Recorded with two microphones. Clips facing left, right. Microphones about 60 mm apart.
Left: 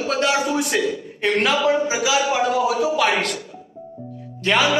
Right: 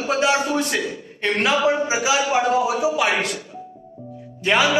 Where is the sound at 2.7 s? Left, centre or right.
Centre.